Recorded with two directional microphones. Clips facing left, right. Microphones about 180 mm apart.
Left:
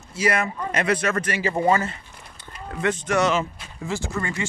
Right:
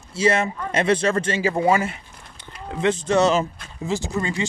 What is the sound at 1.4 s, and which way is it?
Speech, 5° right (ahead or behind).